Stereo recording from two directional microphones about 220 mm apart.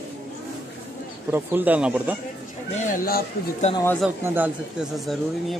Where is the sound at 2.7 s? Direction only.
35° left (ahead or behind).